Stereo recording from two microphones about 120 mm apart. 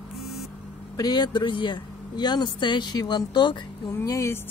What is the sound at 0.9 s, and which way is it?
Speech, 35° left (ahead or behind).